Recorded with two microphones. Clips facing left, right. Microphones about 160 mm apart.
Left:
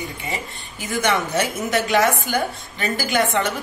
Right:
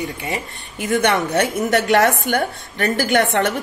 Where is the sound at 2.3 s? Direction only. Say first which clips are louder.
Right 3 dB; 65° right (ahead or behind).